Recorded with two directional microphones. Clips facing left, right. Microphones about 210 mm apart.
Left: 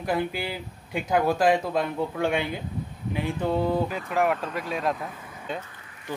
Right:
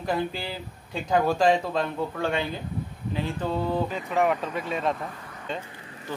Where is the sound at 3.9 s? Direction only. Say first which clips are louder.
Even; centre (ahead or behind).